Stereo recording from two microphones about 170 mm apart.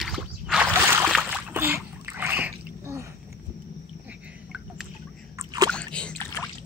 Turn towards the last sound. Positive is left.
turn(degrees=5)  # may be behind; listen again after turning